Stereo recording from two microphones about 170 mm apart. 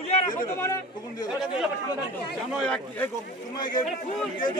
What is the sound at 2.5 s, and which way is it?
Speech, 5° left (ahead or behind).